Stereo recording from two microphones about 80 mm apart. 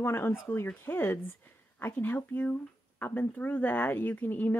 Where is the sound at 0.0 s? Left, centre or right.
Left.